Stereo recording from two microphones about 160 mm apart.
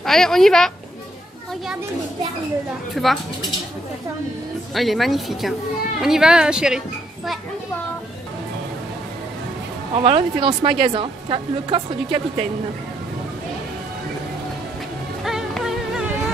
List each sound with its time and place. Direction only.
0.0 s speech: centre (ahead or behind)
2.9 s speech: centre (ahead or behind)
4.7 s speech: centre (ahead or behind)
9.9 s speech: 35° right (ahead or behind)
15.2 s music: centre (ahead or behind)